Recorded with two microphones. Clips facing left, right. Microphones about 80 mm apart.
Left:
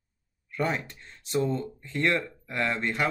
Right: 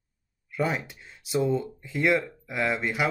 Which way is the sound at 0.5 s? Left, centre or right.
Centre.